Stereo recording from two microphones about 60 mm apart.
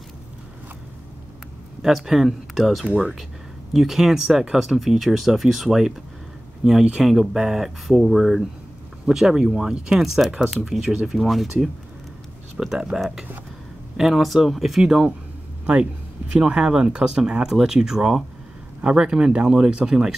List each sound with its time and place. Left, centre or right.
1.8 s speech: centre
12.5 s speech: centre
13.9 s speech: centre